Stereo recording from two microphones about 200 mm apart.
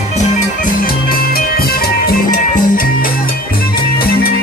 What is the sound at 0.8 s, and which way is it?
Music, 45° left (ahead or behind).